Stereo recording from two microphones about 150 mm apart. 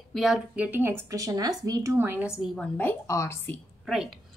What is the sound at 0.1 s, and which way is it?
Speech, centre (ahead or behind).